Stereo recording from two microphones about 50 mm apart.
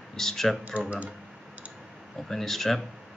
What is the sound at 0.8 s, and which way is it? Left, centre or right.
Speech, right.